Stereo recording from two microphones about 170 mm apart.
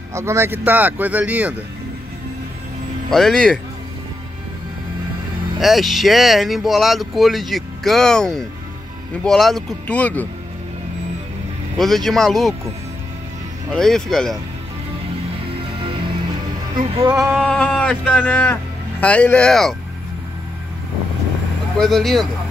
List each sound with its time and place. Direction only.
0.1 s speech: 15° right (ahead or behind)
3.1 s speech: centre (ahead or behind)
5.6 s speech: centre (ahead or behind)
11.8 s speech: centre (ahead or behind)
13.7 s speech: 5° left (ahead or behind)
16.7 s music: 25° right (ahead or behind)
17.4 s speech: 5° left (ahead or behind)
21.7 s speech: centre (ahead or behind)